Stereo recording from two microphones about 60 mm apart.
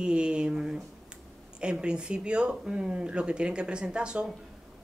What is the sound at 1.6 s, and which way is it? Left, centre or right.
Speech, centre.